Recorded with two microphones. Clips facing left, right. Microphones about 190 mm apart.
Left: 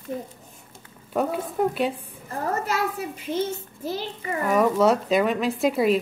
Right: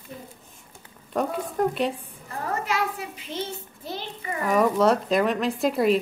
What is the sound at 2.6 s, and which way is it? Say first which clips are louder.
Speech: left 1 dB; 45° left (ahead or behind).